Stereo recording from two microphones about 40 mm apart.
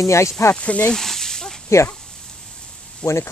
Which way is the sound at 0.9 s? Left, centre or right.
Centre.